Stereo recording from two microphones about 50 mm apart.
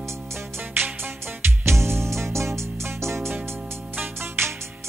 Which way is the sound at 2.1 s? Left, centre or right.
Right.